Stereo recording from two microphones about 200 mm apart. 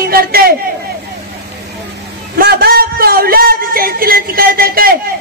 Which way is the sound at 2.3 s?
50° right (ahead or behind).